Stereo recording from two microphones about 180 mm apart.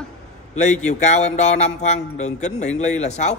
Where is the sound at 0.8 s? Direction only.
40° left (ahead or behind).